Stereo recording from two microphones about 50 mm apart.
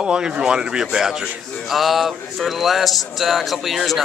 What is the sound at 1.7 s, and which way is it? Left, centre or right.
Speech, centre.